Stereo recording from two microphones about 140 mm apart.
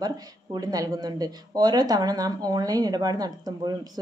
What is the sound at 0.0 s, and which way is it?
Speech, 30° right (ahead or behind).